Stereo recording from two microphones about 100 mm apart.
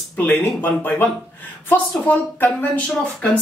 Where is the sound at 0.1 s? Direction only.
20° left (ahead or behind).